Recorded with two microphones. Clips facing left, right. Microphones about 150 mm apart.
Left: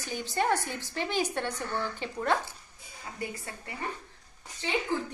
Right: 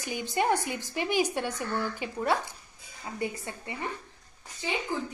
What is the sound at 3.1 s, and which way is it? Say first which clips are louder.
Speech: right 5 dB; 25° right (ahead or behind).